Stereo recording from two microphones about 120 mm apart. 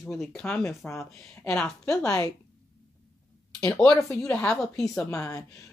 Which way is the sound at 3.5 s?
5° left (ahead or behind).